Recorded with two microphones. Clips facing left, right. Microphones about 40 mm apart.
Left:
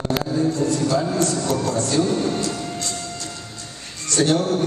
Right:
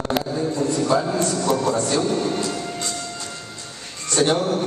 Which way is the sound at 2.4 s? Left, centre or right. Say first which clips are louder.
Even; centre.